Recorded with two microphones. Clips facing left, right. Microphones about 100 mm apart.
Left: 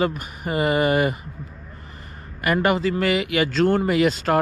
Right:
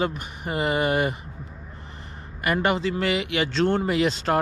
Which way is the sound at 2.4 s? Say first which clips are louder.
Left 3 dB; 55° left (ahead or behind).